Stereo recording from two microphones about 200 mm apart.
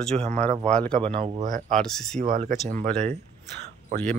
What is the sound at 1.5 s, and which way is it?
Speech, 40° right (ahead or behind).